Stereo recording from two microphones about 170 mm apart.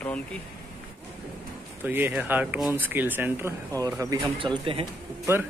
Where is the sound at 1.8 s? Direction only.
10° right (ahead or behind).